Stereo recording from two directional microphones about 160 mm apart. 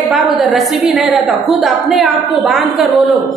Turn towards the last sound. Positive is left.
turn(degrees=0)  # may be behind; listen again after turning